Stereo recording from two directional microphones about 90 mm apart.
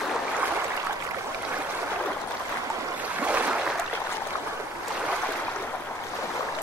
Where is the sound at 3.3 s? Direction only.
15° right (ahead or behind).